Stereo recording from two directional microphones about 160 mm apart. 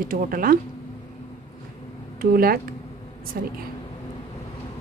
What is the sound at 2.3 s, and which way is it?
A woman's voice, 65° right (ahead or behind).